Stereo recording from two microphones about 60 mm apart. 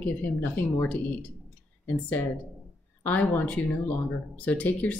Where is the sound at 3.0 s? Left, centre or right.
Left.